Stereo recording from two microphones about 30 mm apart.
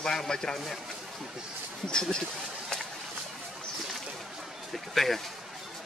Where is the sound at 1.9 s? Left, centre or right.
Left.